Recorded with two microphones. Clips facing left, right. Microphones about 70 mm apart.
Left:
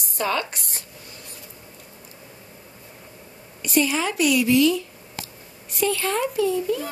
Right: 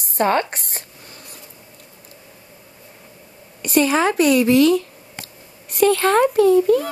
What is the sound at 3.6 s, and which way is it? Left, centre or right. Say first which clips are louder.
Speech: right 5 dB; right.